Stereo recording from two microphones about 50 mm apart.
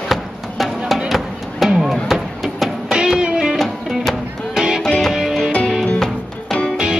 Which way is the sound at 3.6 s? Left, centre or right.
Centre.